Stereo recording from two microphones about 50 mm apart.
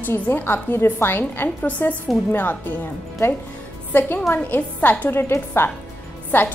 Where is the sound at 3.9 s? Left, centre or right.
Left.